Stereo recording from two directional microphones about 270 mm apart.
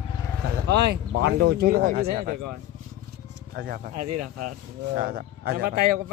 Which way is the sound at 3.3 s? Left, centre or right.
Right.